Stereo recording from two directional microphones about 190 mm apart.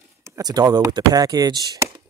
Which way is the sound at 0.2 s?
20° right (ahead or behind).